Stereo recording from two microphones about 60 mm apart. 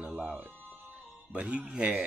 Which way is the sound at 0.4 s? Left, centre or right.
Right.